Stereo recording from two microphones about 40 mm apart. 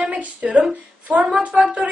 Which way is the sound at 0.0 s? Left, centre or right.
Right.